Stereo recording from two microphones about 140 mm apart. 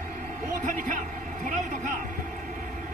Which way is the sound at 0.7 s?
70° right (ahead or behind).